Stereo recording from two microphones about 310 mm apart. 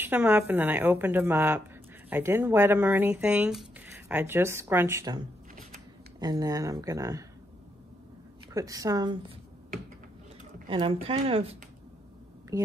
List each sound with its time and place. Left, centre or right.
0.0 s speech: centre
8.5 s speech: centre
10.7 s speech: centre